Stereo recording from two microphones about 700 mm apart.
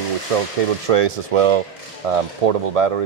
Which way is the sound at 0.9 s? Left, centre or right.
Right.